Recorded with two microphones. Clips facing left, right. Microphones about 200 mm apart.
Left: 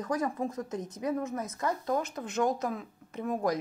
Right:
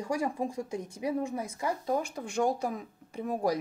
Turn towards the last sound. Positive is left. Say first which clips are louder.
# left 1 dB
turn(degrees=-15)  # may be behind; listen again after turning